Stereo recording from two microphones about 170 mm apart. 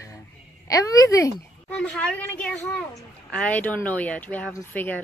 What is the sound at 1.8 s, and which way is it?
A woman's voice, 5° left (ahead or behind).